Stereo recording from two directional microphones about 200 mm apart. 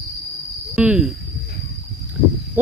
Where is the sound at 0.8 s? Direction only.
Centre (ahead or behind).